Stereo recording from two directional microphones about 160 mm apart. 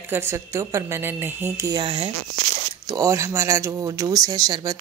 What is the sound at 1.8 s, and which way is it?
Speech, 35° right (ahead or behind).